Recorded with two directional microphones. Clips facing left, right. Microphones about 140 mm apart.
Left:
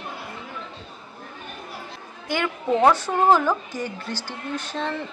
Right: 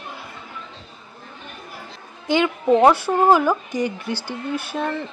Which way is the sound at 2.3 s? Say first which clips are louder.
Right 6 dB; 20° right (ahead or behind).